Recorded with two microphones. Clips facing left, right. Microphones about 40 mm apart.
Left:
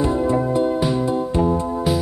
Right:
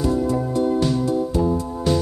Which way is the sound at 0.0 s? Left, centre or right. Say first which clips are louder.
Left 2 dB; left.